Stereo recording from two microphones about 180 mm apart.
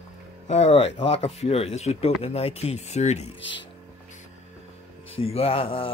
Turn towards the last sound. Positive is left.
turn(degrees=30)  # may be behind; listen again after turning